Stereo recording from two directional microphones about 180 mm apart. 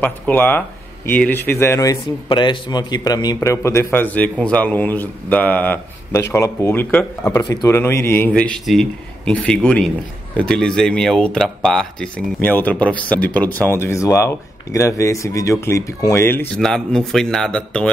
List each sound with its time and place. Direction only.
0.0 s speech: 10° left (ahead or behind)
2.2 s a man's voice: 25° left (ahead or behind); by 17.8 s 5° left (ahead or behind)